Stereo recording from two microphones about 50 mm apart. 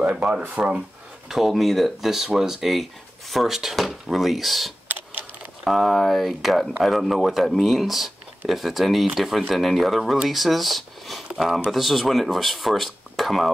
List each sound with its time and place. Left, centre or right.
0.1 s speech: right
1.3 s speech: centre